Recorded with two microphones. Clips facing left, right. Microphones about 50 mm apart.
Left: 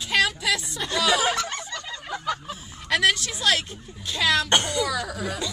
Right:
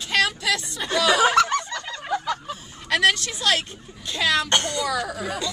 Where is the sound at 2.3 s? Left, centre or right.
Centre.